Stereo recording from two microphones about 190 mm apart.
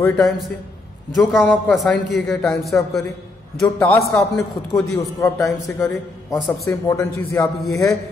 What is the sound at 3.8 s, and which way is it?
A man's voice, 15° left (ahead or behind).